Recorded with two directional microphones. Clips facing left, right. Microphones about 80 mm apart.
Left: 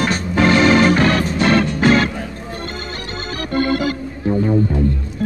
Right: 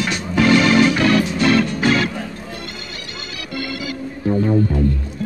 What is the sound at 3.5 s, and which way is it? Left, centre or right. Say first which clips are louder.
Organ: left 9 dB; left.